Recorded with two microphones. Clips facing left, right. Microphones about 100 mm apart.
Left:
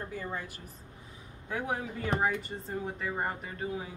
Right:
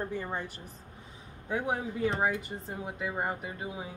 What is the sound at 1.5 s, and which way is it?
Speech, 20° right (ahead or behind).